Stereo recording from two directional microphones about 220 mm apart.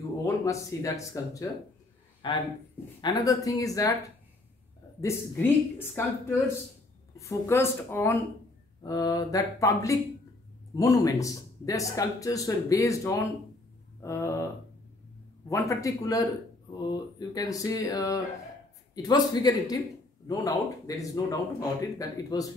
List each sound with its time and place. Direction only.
0.2 s speech: 15° left (ahead or behind)
5.0 s speech: 10° left (ahead or behind)